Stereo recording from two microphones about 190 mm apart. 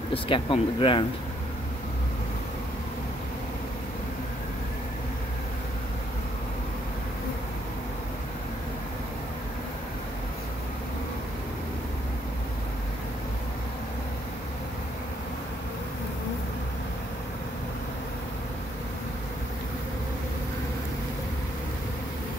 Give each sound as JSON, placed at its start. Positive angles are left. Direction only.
{"t": 0.1, "sound": "speech", "side_deg": 25}